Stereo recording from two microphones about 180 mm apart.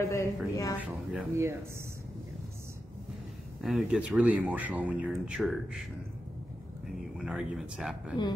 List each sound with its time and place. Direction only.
0.0 s a sound: 15° left (ahead or behind)
0.7 s speech: 5° right (ahead or behind)
3.6 s speech: 5° right (ahead or behind)
7.2 s speech: 5° right (ahead or behind)